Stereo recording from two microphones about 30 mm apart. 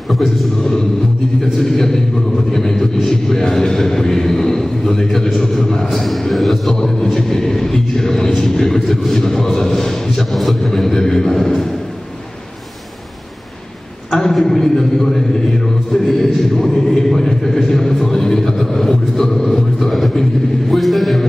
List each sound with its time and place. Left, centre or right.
0.1 s a man's voice: centre
1.6 s a man's voice: centre
5.9 s a man's voice: centre
6.7 s a man's voice: centre
10.3 s a man's voice: centre
10.7 s a man's voice: centre
14.1 s a man's voice: centre